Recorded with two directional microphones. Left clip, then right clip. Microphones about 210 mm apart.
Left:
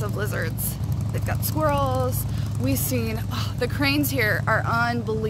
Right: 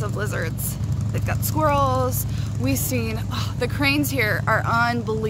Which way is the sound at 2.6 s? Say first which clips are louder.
Right 1 dB; centre (ahead or behind).